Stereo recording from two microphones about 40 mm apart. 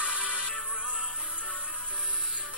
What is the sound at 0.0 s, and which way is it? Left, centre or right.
Music, right.